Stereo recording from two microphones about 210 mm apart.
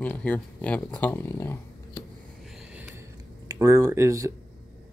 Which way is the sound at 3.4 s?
15° right (ahead or behind).